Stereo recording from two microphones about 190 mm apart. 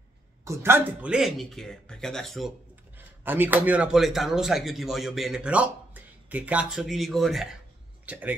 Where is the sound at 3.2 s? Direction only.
10° right (ahead or behind).